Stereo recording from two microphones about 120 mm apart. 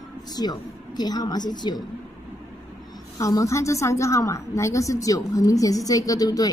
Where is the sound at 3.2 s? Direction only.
30° left (ahead or behind).